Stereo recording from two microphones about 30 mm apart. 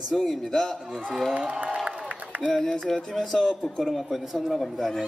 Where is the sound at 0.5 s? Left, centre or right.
Centre.